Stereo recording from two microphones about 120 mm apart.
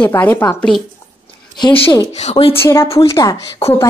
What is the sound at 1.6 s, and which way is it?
Speech, 45° left (ahead or behind).